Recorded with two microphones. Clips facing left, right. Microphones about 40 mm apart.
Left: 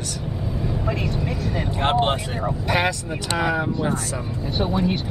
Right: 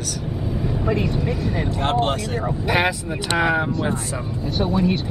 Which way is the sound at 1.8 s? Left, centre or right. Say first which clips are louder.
Left 1 dB; centre.